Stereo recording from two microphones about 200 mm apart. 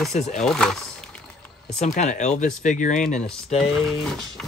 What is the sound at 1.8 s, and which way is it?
Speech, 35° left (ahead or behind).